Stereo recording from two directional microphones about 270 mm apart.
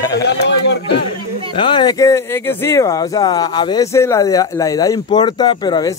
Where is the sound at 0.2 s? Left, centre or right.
Left.